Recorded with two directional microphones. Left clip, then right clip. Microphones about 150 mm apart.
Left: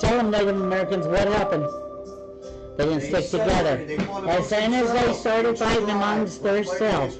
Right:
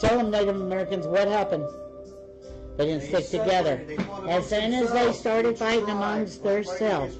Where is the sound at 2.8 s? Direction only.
Centre (ahead or behind).